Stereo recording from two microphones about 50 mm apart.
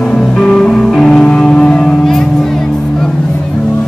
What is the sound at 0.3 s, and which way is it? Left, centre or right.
Music, centre.